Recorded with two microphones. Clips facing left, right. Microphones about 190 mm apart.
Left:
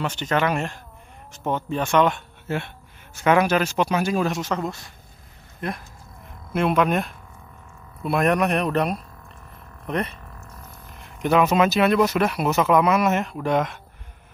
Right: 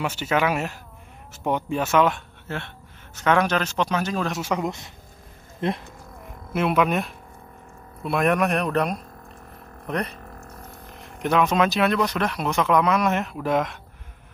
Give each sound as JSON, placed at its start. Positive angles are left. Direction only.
{"t": 0.0, "sound": "speech", "side_deg": -10}
{"t": 2.4, "sound": "speech", "side_deg": 10}
{"t": 4.3, "sound": "speech", "side_deg": -10}
{"t": 6.5, "sound": "speech", "side_deg": -5}
{"t": 11.2, "sound": "speech", "side_deg": 5}